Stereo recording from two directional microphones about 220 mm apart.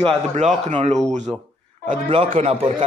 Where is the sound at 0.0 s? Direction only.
30° right (ahead or behind).